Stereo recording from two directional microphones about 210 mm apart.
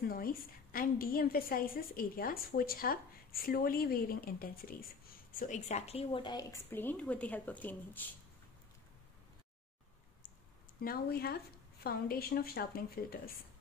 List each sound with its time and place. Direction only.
0.1 s a woman's voice: 45° left (ahead or behind)
5.3 s a woman's voice: 35° left (ahead or behind); by 8.1 s 10° left (ahead or behind)
10.8 s a woman's voice: 45° left (ahead or behind)